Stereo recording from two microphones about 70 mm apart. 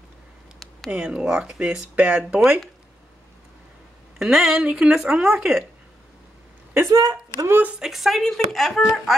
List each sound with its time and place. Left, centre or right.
0.6 s a sound: centre
0.9 s speech: centre
4.2 s speech: centre
6.9 s speech: right
7.8 s speech: centre